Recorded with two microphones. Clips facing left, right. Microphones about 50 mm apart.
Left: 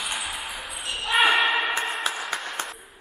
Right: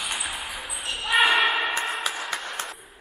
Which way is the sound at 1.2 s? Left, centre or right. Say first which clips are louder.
Even; centre.